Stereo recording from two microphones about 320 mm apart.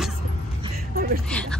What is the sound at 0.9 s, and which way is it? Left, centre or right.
Speech, right.